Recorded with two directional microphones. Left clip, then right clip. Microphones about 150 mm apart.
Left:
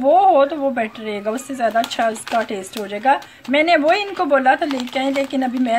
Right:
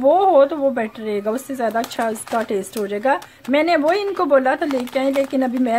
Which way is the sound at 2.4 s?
45° right (ahead or behind).